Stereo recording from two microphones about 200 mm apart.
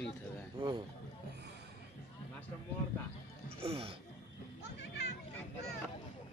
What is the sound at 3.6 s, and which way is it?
Speech, 30° right (ahead or behind).